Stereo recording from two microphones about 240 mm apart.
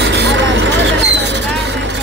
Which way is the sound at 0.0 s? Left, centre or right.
Right.